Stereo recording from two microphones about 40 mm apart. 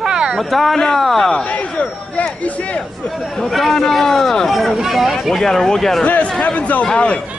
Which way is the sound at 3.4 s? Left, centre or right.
Centre.